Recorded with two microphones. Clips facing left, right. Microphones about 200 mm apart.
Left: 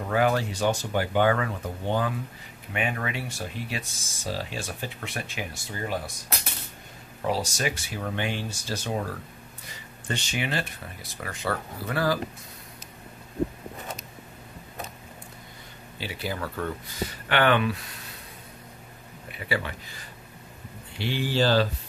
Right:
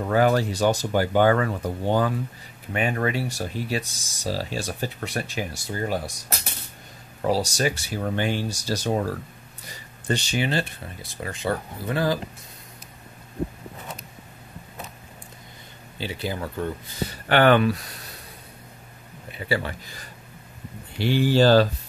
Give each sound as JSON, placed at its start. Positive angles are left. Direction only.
{"t": 0.1, "sound": "speech", "side_deg": -35}
{"t": 7.2, "sound": "speech", "side_deg": -35}
{"t": 16.0, "sound": "speech", "side_deg": -25}
{"t": 17.3, "sound": "speech", "side_deg": -40}
{"t": 19.3, "sound": "speech", "side_deg": -30}
{"t": 21.0, "sound": "speech", "side_deg": -45}